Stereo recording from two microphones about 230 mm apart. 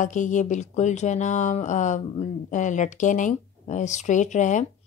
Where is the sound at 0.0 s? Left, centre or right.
Left.